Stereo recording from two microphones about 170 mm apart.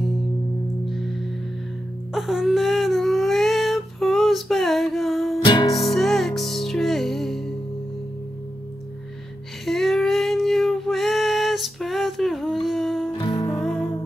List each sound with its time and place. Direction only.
2.1 s a sound: centre (ahead or behind)
5.4 s music: 25° left (ahead or behind)
5.7 s music: centre (ahead or behind)
9.7 s female singing: centre (ahead or behind)
13.2 s music: 30° left (ahead or behind)